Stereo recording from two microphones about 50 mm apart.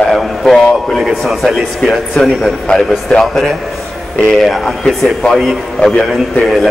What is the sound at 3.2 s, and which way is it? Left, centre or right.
Speech, centre.